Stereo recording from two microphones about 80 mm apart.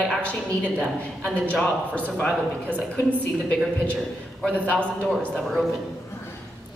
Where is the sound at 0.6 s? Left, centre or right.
Centre.